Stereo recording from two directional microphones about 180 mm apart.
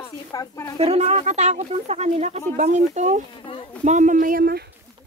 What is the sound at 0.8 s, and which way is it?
Speech, 35° right (ahead or behind).